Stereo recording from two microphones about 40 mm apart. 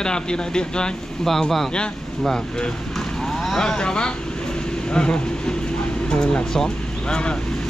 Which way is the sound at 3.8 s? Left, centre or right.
Left.